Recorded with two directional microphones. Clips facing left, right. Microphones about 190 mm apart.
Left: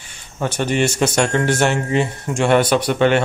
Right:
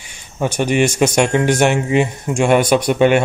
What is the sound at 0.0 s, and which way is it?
A man's voice, 15° right (ahead or behind).